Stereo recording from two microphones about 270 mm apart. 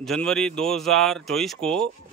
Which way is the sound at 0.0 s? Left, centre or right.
Centre.